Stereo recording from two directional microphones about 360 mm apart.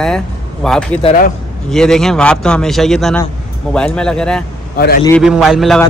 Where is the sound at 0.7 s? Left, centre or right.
Centre.